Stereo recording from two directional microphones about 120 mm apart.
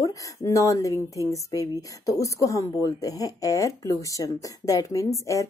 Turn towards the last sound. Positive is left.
turn(degrees=25)  # may be behind; listen again after turning